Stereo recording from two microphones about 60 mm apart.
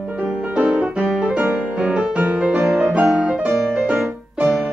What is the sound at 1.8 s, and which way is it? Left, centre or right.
Music, centre.